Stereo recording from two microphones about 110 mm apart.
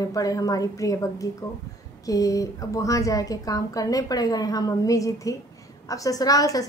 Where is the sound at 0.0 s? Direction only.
35° left (ahead or behind).